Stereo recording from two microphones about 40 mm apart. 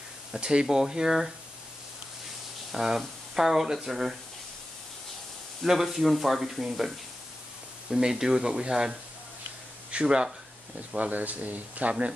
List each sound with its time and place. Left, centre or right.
0.4 s speech: centre
2.7 s speech: centre
5.7 s speech: centre
7.9 s speech: centre
11.0 s speech: right